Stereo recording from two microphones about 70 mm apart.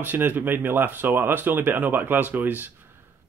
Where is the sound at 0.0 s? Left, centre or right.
Right.